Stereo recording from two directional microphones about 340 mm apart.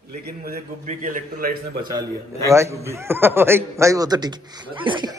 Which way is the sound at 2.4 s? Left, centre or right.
Centre.